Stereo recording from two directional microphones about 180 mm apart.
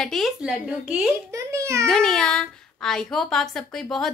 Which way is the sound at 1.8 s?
5° left (ahead or behind).